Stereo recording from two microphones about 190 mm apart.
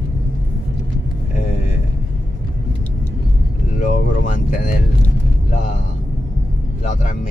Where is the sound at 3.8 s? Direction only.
40° left (ahead or behind).